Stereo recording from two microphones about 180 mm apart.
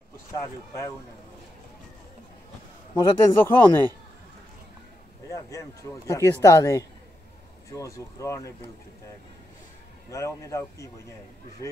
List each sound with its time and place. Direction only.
2.9 s speech: 10° left (ahead or behind)
5.3 s speech: 20° left (ahead or behind)
10.0 s speech: 15° left (ahead or behind)